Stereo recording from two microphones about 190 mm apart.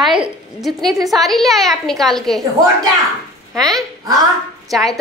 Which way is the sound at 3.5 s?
Centre (ahead or behind).